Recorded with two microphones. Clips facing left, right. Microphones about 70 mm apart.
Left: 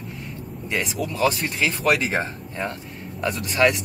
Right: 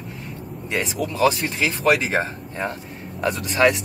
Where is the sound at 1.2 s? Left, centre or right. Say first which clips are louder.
Right 2 dB; right.